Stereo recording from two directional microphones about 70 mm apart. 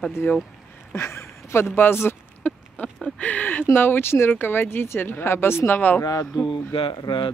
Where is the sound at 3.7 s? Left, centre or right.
Left.